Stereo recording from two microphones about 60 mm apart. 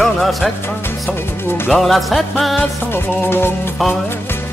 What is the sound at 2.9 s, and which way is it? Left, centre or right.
Music, left.